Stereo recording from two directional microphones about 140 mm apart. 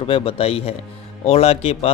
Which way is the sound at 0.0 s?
40° left (ahead or behind).